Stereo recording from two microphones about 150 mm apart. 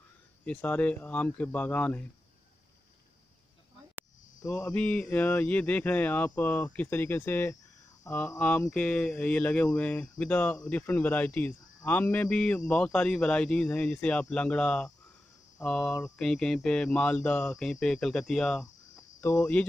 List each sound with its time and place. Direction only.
0.5 s speech: 10° left (ahead or behind)
4.4 s speech: 20° left (ahead or behind)
4.7 s speech: 5° left (ahead or behind)
19.2 s speech: 15° left (ahead or behind)